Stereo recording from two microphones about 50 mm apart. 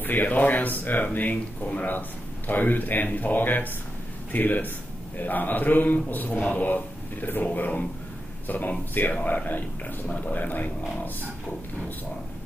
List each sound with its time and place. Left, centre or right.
0.0 s speech: left